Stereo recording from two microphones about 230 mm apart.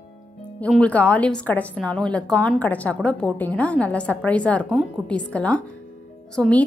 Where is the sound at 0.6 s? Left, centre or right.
Centre.